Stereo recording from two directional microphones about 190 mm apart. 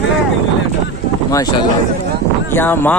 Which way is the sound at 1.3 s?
20° left (ahead or behind).